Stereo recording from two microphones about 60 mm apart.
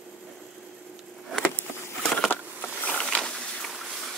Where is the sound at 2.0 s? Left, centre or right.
Centre.